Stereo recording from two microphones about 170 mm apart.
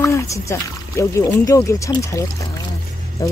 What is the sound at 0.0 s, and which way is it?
Speech, 15° left (ahead or behind).